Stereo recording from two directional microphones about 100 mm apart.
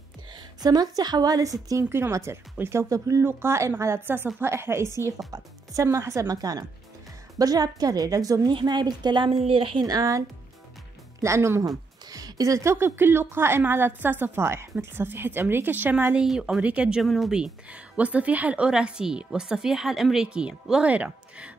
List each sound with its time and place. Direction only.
0.6 s a woman's voice: 40° right (ahead or behind)
9.4 s a woman's voice: 65° right (ahead or behind)
9.8 s a woman's voice: 35° right (ahead or behind); by 21.5 s 15° right (ahead or behind)